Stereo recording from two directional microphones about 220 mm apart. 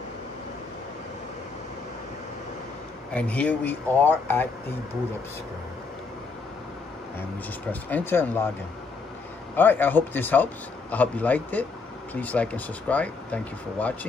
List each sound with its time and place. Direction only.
3.2 s speech: 5° left (ahead or behind)
7.9 s speech: 10° left (ahead or behind)
9.6 s speech: 10° left (ahead or behind)